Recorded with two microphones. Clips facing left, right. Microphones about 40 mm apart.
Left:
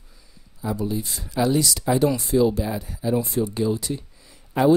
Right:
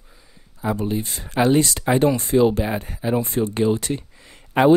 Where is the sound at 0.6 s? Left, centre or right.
Right.